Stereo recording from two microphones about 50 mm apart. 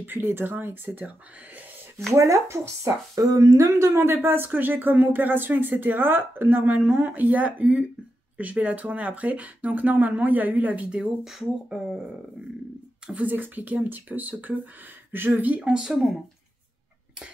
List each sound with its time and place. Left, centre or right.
0.0 s speech: right
2.1 s speech: right
4.1 s speech: right
11.0 s speech: centre
13.2 s speech: right
15.6 s speech: centre